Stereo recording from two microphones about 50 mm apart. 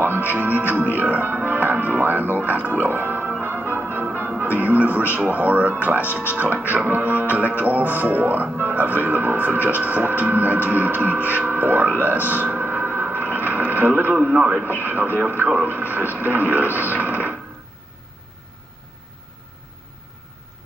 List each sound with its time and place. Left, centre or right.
0.2 s speech: right
2.8 s music: right
4.4 s speech: right
12.0 s a sound: right
13.5 s speech: right